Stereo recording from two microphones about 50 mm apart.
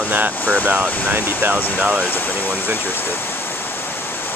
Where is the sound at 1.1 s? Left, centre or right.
Right.